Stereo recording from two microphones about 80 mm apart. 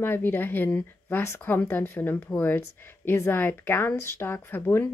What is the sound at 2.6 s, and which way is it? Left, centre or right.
Speech, left.